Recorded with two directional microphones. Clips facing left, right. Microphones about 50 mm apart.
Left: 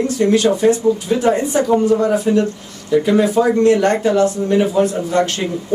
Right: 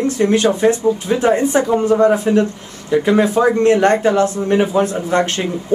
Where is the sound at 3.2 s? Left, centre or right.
Right.